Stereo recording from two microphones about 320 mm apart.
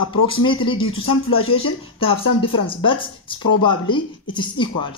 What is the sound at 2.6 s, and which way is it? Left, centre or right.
Speech, centre.